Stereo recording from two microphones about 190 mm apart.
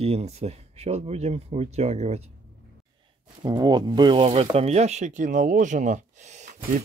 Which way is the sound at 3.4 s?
20° right (ahead or behind).